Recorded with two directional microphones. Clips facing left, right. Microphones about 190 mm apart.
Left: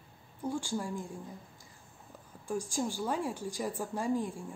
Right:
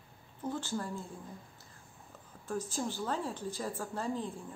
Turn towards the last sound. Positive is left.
turn(degrees=10)  # may be behind; listen again after turning